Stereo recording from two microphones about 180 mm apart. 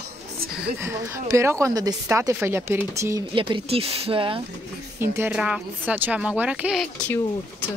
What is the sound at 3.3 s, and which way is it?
Speech, 30° right (ahead or behind).